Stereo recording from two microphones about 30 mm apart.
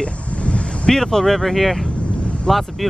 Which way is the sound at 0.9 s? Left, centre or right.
Centre.